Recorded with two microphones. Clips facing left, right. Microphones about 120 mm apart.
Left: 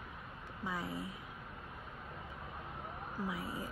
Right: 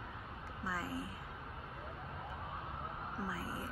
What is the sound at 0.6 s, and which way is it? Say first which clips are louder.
Speech: left 1 dB; 15° left (ahead or behind).